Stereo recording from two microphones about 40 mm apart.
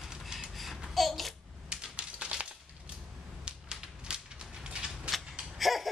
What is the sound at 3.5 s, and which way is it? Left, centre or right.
Typewriter, centre.